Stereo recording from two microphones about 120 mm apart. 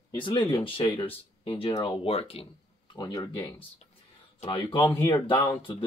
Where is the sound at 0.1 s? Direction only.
40° left (ahead or behind).